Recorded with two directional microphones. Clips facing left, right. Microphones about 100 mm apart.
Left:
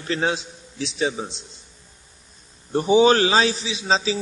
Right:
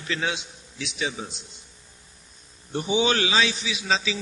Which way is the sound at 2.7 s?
40° left (ahead or behind).